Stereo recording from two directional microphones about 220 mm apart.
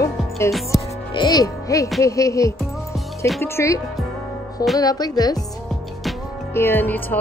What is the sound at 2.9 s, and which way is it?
Music, centre (ahead or behind).